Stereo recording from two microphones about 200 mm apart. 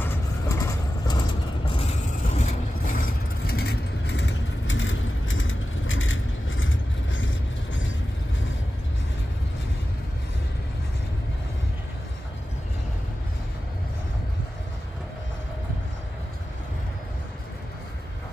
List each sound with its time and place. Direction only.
0.0 s vehicle: 15° left (ahead or behind)
2.0 s vehicle: 40° left (ahead or behind); by 7.9 s 70° left (ahead or behind)